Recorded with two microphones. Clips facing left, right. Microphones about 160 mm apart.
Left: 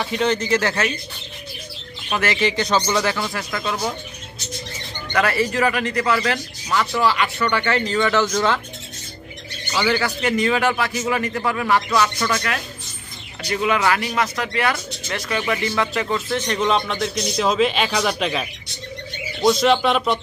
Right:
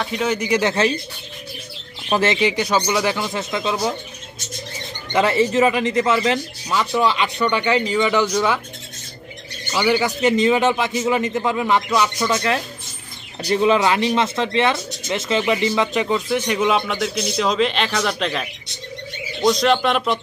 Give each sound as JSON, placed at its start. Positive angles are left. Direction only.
{"t": 0.0, "sound": "speech", "side_deg": -5}
{"t": 2.0, "sound": "speech", "side_deg": -25}
{"t": 5.1, "sound": "speech", "side_deg": -20}
{"t": 9.7, "sound": "speech", "side_deg": -15}